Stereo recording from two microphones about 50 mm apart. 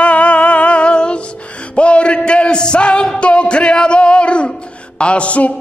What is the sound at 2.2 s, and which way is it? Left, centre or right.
Music, centre.